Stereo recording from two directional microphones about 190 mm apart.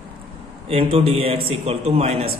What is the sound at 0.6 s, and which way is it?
Speech, 30° right (ahead or behind).